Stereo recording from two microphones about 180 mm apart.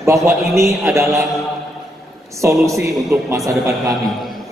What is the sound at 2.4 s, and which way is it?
Speech, 15° right (ahead or behind).